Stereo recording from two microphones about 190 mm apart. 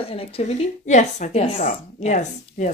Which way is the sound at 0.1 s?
35° left (ahead or behind).